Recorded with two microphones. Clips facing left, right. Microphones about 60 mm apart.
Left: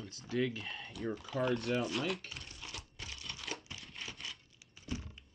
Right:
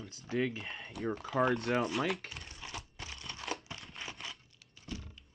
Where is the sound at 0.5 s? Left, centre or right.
Centre.